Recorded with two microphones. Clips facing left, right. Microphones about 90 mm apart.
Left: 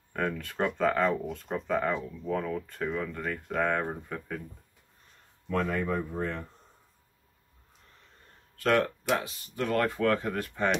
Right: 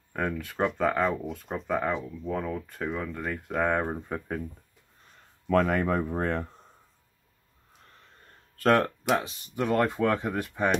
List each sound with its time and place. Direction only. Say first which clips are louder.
0.1 s speech: right 1 dB; 5° right (ahead or behind)
5.5 s speech: right 5 dB; 75° right (ahead or behind)
8.5 s speech: right 3 dB; 40° right (ahead or behind)
9.6 s speech: right 2 dB; 20° right (ahead or behind)